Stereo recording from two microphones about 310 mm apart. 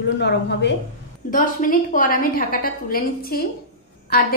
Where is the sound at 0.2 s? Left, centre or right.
Left.